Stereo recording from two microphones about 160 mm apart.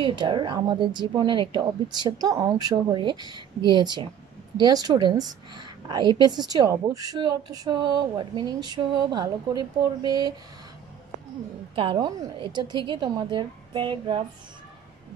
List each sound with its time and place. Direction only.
0.0 s a woman's voice: 30° right (ahead or behind)
11.7 s a woman's voice: 35° right (ahead or behind)